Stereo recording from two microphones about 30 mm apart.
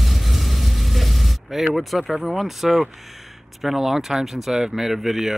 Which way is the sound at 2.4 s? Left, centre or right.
Centre.